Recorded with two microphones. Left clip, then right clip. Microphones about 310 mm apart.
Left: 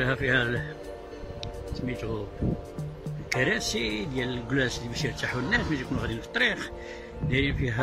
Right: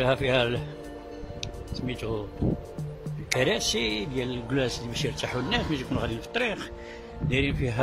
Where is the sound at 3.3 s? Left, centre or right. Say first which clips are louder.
Right 1 dB; centre.